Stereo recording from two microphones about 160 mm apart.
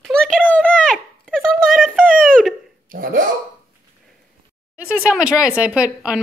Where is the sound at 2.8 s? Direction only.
60° right (ahead or behind).